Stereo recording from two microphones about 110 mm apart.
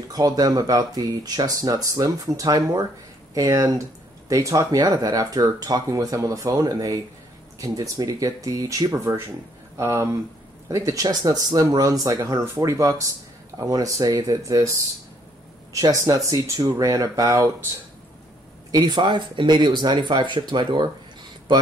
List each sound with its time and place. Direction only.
0.1 s speech: 35° right (ahead or behind)
15.7 s speech: 30° right (ahead or behind)
18.7 s speech: 40° right (ahead or behind)